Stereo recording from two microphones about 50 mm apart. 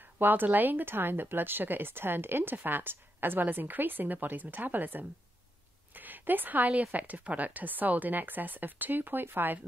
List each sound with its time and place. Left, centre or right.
0.2 s speech: right